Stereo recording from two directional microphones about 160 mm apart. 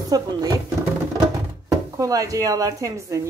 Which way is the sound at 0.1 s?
25° right (ahead or behind).